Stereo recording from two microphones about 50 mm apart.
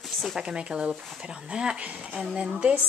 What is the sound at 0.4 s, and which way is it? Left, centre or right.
A woman's voice, centre.